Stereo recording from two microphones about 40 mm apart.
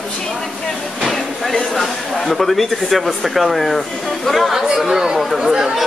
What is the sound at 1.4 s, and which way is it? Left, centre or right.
Speech, centre.